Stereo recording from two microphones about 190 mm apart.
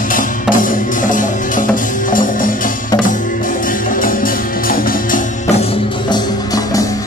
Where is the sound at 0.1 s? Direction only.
45° left (ahead or behind).